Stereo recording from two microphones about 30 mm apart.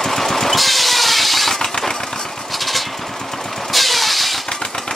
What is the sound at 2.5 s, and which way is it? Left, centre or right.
Vehicle, centre.